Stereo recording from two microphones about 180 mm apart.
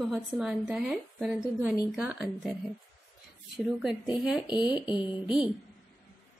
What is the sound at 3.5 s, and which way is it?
Speech, 5° right (ahead or behind).